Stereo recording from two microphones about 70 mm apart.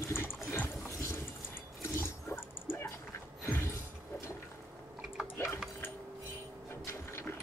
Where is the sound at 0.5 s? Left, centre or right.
Left.